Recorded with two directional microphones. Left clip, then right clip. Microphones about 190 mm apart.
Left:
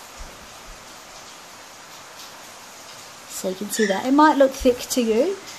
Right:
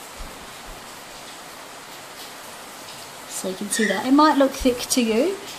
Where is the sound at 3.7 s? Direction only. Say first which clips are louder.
Even; 35° left (ahead or behind).